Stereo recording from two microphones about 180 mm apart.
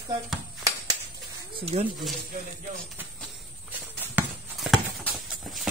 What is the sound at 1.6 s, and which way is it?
Speech, 30° right (ahead or behind).